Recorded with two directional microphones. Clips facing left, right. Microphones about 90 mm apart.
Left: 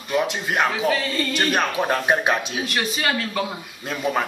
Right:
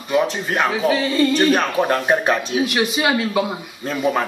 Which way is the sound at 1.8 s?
5° right (ahead or behind).